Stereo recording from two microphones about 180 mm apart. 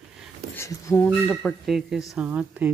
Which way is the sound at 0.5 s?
15° left (ahead or behind).